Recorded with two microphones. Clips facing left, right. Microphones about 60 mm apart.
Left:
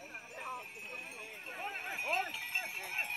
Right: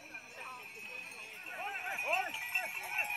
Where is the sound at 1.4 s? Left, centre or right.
Centre.